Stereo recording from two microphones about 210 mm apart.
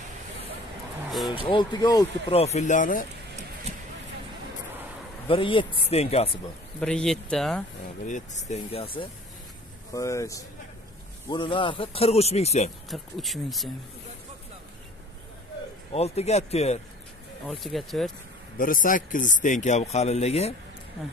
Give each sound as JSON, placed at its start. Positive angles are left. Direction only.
{"t": 1.5, "sound": "speech", "side_deg": 20}
{"t": 5.3, "sound": "speech", "side_deg": 25}
{"t": 6.8, "sound": "speech", "side_deg": 5}
{"t": 8.1, "sound": "a man's voice", "side_deg": 35}
{"t": 9.9, "sound": "speech", "side_deg": 15}
{"t": 12.9, "sound": "speech", "side_deg": 0}
{"t": 15.9, "sound": "a man's voice", "side_deg": 30}
{"t": 17.5, "sound": "speech", "side_deg": 0}
{"t": 18.6, "sound": "a man's voice", "side_deg": 40}